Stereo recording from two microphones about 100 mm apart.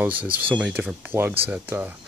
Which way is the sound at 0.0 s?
15° right (ahead or behind).